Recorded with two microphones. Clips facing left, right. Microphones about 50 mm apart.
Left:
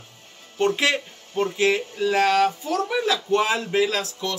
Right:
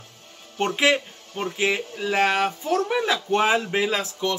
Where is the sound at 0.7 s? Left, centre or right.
Centre.